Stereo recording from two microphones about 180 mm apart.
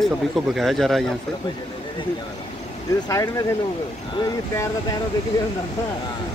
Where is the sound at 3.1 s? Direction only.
15° left (ahead or behind).